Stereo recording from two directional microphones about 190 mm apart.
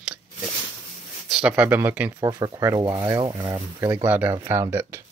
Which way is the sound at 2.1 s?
20° right (ahead or behind).